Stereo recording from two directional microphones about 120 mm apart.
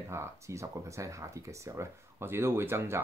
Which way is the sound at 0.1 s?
25° right (ahead or behind).